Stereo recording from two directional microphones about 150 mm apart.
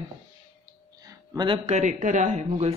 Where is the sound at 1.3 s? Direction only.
35° right (ahead or behind).